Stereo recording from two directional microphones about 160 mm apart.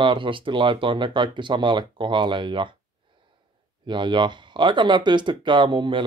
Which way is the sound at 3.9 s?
30° right (ahead or behind).